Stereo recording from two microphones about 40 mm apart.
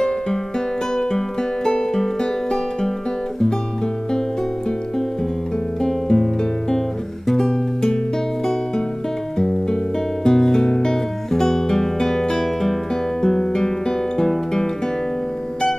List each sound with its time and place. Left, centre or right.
0.9 s music: centre
5.8 s music: centre
10.2 s music: centre